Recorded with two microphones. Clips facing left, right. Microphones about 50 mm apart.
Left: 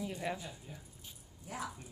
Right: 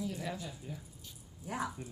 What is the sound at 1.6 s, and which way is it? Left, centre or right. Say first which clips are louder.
Speech: right 4 dB; centre.